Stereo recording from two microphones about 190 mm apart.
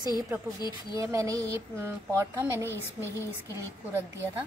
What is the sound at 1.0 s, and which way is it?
Speech, 15° right (ahead or behind).